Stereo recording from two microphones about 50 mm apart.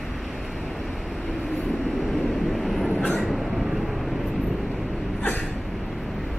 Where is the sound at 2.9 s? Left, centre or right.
Centre.